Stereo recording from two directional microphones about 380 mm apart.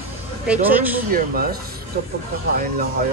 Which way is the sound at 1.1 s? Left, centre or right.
Right.